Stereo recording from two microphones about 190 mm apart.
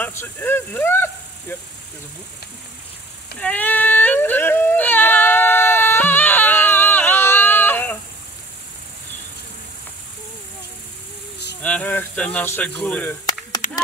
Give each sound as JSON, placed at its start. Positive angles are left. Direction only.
{"t": 0.0, "sound": "speech", "side_deg": 10}
{"t": 3.3, "sound": "dog", "side_deg": 10}
{"t": 11.6, "sound": "speech", "side_deg": 5}
{"t": 13.6, "sound": "a sound", "side_deg": 40}